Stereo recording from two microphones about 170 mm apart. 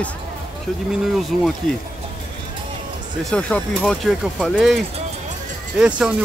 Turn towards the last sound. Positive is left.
turn(degrees=-5)  # may be behind; listen again after turning